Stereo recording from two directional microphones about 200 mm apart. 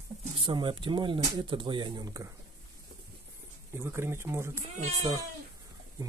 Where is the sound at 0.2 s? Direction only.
25° right (ahead or behind).